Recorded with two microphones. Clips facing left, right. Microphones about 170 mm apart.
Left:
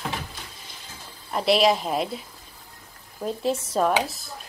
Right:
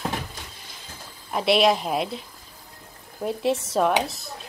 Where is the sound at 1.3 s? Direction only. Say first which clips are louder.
Even; centre (ahead or behind).